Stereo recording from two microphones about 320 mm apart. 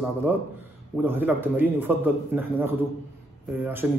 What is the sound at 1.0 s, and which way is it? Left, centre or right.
A man's voice, centre.